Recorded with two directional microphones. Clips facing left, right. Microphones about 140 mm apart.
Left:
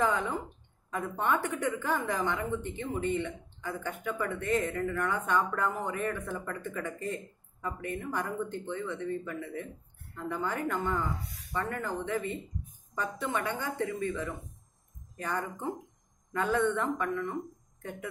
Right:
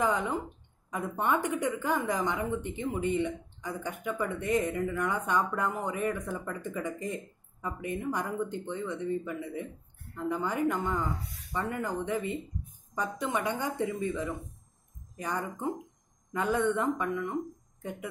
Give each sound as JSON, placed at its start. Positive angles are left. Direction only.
{"t": 0.0, "sound": "speech", "side_deg": -15}